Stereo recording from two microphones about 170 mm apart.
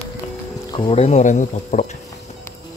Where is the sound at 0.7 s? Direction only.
30° left (ahead or behind).